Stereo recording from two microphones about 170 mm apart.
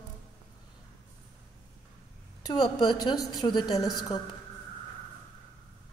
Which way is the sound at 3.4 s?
25° left (ahead or behind).